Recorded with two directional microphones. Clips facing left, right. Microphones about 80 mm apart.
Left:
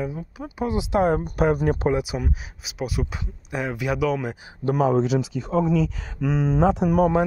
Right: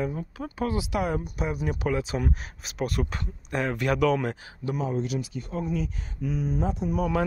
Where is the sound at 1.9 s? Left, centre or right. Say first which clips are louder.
Left 2 dB; centre.